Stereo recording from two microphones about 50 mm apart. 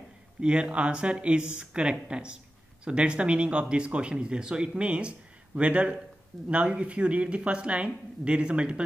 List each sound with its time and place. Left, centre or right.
0.4 s speech: centre